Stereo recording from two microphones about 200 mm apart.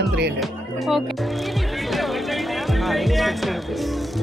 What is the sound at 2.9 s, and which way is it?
Speech, centre (ahead or behind).